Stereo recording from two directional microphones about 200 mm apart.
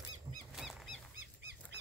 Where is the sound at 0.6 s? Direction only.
Centre (ahead or behind).